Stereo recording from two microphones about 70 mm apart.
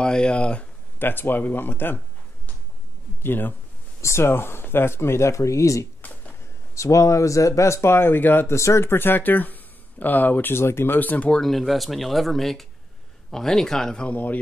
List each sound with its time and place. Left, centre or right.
0.0 s speech: centre
0.9 s speech: left
3.2 s speech: left
8.5 s speech: left; by 11.4 s centre
11.4 s speech: centre
14.0 s speech: left